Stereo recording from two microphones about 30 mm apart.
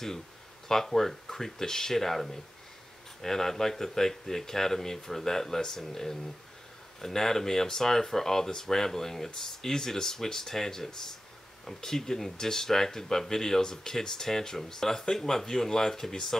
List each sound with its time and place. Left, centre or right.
0.7 s speech: centre